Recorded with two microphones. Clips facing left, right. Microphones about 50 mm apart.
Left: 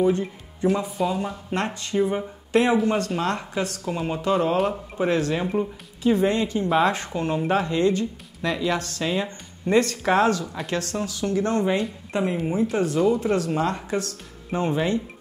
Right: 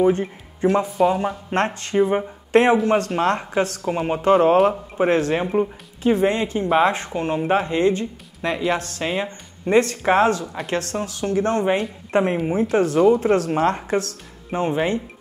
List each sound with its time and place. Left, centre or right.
0.0 s speech: right
5.5 s speech: right
11.5 s speech: right
12.1 s speech: right
14.5 s speech: right